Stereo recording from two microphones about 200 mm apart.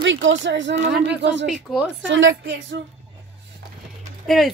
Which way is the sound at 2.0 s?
70° right (ahead or behind).